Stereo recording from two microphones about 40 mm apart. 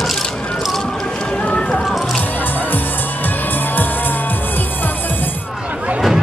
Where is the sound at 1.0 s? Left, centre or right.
Centre.